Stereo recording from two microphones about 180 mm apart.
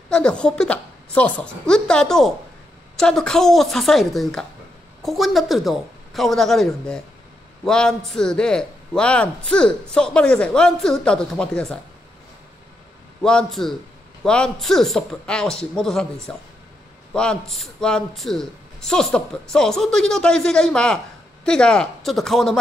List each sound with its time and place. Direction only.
0.1 s speech: 5° left (ahead or behind)
13.2 s speech: 5° left (ahead or behind)